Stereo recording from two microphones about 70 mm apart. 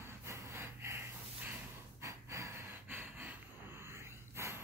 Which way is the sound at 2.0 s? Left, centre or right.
Right.